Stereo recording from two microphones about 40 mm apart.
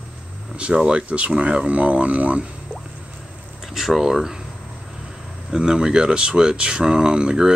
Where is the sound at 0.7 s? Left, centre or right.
Right.